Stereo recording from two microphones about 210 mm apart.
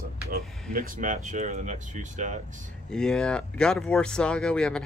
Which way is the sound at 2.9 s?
5° left (ahead or behind).